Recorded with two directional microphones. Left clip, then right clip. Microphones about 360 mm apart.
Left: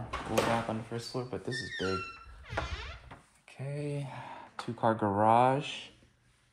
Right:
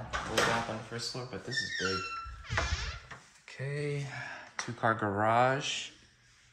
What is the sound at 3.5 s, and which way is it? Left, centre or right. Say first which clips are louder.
Speech: right 2 dB; centre.